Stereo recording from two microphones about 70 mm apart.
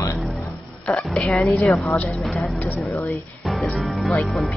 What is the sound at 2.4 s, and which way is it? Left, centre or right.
Speech, left.